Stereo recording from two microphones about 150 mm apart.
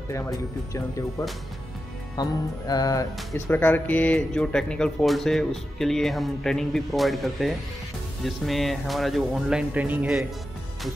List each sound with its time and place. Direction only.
0.1 s speech: 20° left (ahead or behind)
2.1 s speech: 25° left (ahead or behind); by 10.2 s 5° right (ahead or behind)